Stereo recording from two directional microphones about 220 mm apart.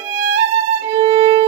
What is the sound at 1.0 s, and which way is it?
Violin, 25° right (ahead or behind).